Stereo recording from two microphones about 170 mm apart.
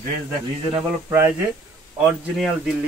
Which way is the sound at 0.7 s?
10° right (ahead or behind).